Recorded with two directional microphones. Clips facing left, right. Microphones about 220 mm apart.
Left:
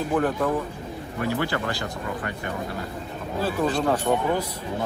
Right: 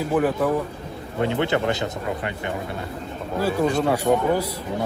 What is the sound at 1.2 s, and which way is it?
A man's voice, 25° right (ahead or behind).